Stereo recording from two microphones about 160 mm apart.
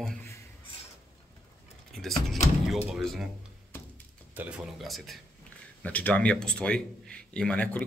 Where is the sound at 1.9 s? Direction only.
Centre (ahead or behind).